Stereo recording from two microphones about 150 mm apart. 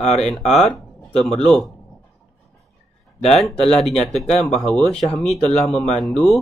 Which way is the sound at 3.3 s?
Centre (ahead or behind).